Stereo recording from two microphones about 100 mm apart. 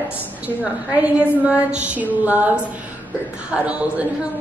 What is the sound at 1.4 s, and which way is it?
A woman's voice, 10° right (ahead or behind).